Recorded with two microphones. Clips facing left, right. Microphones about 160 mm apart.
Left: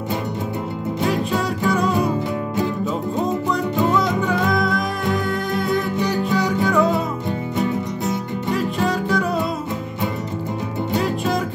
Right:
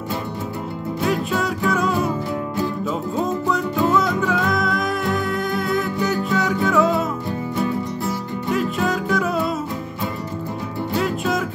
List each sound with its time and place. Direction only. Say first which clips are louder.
1.4 s music: left 1 dB; centre (ahead or behind)
4.3 s music: left 1 dB; centre (ahead or behind)
7.5 s music: even; 20° left (ahead or behind)
8.5 s music: even; centre (ahead or behind)
11.1 s music: left 1 dB; centre (ahead or behind)